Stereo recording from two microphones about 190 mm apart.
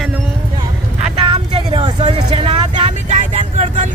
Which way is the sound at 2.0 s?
35° right (ahead or behind).